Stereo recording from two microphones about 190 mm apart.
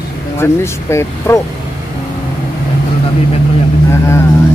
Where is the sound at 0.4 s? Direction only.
15° left (ahead or behind).